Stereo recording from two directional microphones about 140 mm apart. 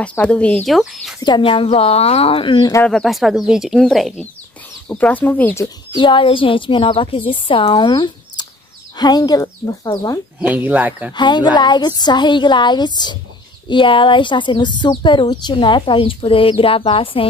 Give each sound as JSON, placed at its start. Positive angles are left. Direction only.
{"t": 0.0, "sound": "speech", "side_deg": 10}
{"t": 1.2, "sound": "speech", "side_deg": 35}
{"t": 2.8, "sound": "speech", "side_deg": 5}
{"t": 5.9, "sound": "speech", "side_deg": 35}
{"t": 10.4, "sound": "speech", "side_deg": -10}
{"t": 11.1, "sound": "speech", "side_deg": 30}